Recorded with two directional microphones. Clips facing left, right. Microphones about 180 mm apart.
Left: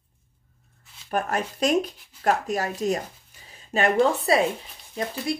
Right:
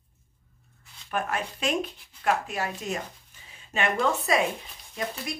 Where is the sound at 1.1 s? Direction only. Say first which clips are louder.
Left 4 dB; 40° left (ahead or behind).